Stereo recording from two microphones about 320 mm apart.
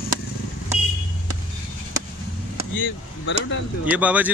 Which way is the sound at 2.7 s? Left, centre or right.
Left.